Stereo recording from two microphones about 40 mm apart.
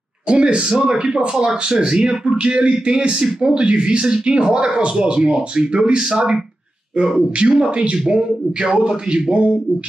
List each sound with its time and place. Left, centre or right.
0.3 s speech: right